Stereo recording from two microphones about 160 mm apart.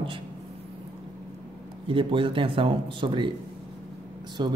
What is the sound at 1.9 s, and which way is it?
Speech, 30° right (ahead or behind).